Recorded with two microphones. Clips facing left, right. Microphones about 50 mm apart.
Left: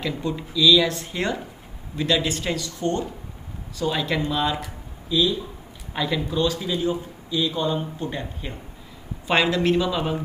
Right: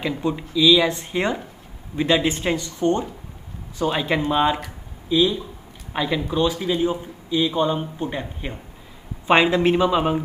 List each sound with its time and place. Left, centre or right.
0.0 s speech: centre